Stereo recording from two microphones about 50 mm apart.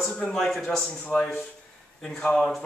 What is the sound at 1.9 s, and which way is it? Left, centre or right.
Speech, centre.